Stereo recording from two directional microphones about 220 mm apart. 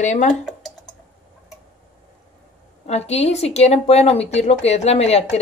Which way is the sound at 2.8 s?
30° left (ahead or behind).